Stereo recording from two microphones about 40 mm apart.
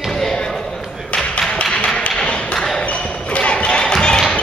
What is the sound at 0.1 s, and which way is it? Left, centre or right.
Basketball bounce, centre.